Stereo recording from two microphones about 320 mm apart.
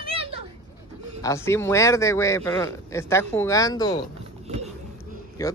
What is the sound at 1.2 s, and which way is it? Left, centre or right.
A man's voice, centre.